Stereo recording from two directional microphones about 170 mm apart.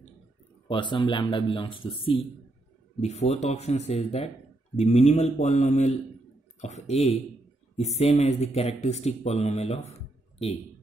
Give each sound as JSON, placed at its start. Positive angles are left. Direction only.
{"t": 0.7, "sound": "speech", "side_deg": 30}